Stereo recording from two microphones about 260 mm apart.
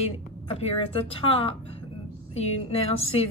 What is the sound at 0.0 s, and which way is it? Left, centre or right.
A woman's voice, left.